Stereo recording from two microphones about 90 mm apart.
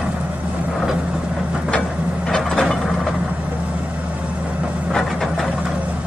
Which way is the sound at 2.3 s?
5° left (ahead or behind).